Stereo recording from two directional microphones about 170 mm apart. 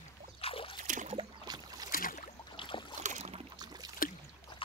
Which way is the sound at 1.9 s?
55° left (ahead or behind).